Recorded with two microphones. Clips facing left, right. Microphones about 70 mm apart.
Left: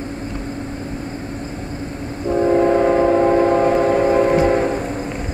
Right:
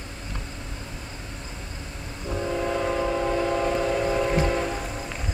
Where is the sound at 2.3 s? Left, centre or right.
Left.